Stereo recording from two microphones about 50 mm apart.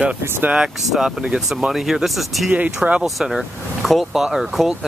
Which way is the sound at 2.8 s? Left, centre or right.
Centre.